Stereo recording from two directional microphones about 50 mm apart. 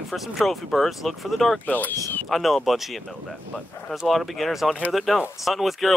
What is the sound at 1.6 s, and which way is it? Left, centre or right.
Speech, left.